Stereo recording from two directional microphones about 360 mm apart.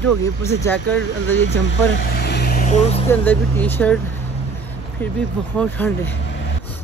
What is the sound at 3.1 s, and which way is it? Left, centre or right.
Speech, centre.